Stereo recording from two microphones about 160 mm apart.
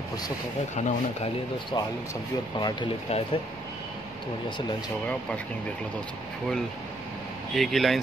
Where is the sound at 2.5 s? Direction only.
25° left (ahead or behind).